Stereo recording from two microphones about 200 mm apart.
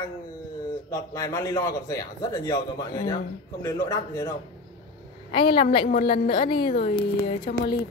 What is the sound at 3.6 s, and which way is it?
Speech, 15° left (ahead or behind).